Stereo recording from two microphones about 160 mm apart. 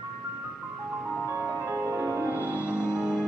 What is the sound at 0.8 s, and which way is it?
Music, 5° right (ahead or behind).